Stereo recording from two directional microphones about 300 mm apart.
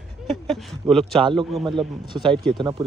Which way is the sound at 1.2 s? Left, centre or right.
Centre.